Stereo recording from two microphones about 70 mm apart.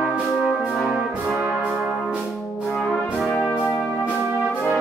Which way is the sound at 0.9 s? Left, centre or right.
Centre.